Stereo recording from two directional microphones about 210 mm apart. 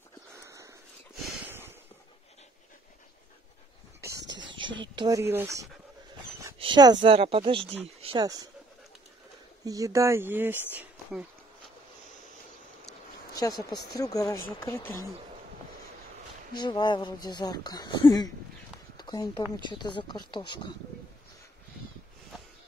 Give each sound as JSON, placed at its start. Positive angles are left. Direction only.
{"t": 0.4, "sound": "a sound", "side_deg": -15}
{"t": 4.9, "sound": "speech", "side_deg": -15}
{"t": 9.7, "sound": "speech", "side_deg": -15}
{"t": 13.3, "sound": "speech", "side_deg": 15}
{"t": 16.5, "sound": "speech", "side_deg": 20}
{"t": 18.9, "sound": "a sound", "side_deg": 20}
{"t": 19.5, "sound": "speech", "side_deg": 20}